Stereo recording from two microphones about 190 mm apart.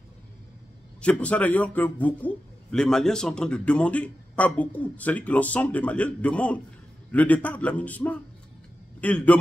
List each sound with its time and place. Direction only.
1.0 s a man's voice: 5° left (ahead or behind)